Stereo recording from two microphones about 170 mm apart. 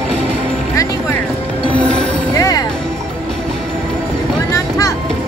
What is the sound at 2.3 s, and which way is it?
Music, 20° left (ahead or behind).